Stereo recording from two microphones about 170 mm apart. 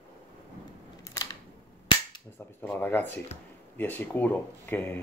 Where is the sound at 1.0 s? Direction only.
20° left (ahead or behind).